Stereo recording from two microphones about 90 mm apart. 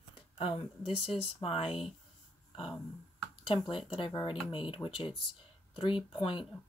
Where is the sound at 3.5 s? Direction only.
75° left (ahead or behind).